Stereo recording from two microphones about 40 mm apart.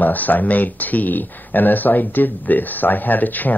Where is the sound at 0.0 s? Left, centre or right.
Left.